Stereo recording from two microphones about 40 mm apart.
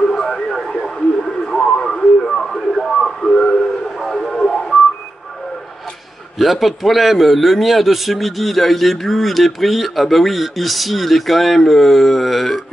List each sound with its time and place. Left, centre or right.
0.1 s radio: centre
2.8 s a sound: centre
4.1 s radio: centre
6.3 s a man's voice: centre